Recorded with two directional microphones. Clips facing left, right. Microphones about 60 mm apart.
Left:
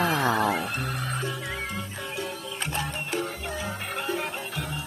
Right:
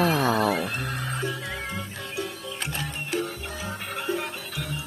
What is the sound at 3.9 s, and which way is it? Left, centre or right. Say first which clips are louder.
Music: right 1 dB; centre.